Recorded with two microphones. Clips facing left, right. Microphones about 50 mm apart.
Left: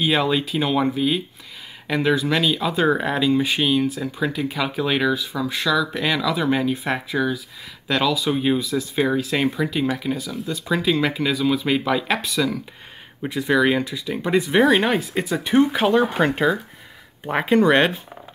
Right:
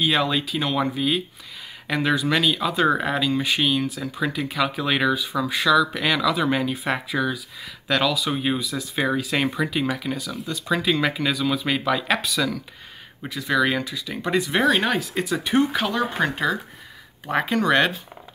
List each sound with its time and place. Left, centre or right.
0.0 s speech: centre
13.3 s speech: left
13.6 s speech: centre
15.9 s speech: left
17.2 s speech: centre
17.5 s speech: left